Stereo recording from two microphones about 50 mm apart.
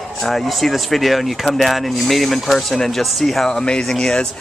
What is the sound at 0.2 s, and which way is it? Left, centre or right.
Speech, centre.